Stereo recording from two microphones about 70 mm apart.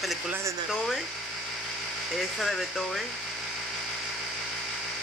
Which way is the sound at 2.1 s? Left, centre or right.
Centre.